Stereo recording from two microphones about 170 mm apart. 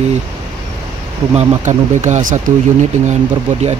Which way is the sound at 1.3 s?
45° right (ahead or behind).